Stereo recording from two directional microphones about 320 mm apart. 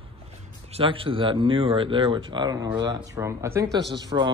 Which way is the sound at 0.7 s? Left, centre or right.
Centre.